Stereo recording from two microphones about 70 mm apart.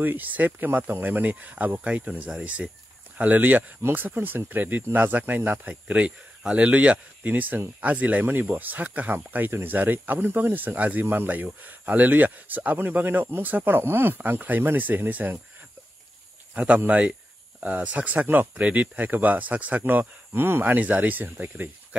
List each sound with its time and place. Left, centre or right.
0.0 s speech: right
16.5 s speech: centre